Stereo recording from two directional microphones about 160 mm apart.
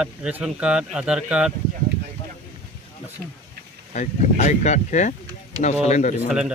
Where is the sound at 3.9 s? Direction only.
45° left (ahead or behind).